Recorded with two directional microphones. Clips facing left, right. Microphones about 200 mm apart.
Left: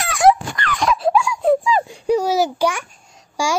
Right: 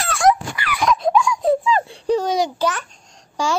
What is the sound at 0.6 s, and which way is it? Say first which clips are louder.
Wail: even; 5° right (ahead or behind).